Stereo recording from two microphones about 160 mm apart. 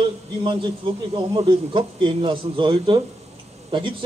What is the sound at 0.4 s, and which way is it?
A man's voice, 30° right (ahead or behind).